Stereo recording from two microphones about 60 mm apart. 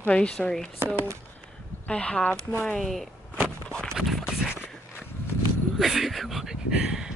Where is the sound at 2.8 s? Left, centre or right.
Centre.